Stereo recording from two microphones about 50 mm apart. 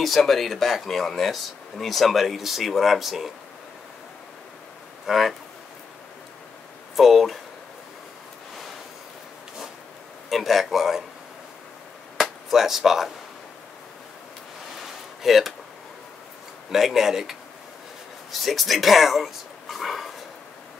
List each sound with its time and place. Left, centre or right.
0.0 s speech: centre
5.0 s speech: centre
7.0 s speech: centre
10.3 s speech: centre
12.2 s speech: centre
14.8 s a sound: centre
16.7 s speech: centre